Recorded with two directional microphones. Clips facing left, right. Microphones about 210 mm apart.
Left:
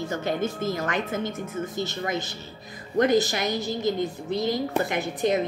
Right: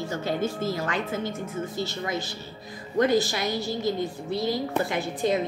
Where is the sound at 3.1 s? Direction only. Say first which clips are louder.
Left 3 dB; 20° left (ahead or behind).